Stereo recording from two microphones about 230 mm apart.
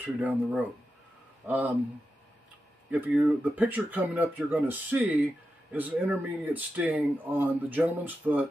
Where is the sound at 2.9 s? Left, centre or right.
Centre.